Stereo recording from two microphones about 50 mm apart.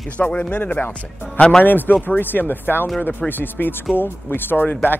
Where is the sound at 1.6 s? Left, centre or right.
Left.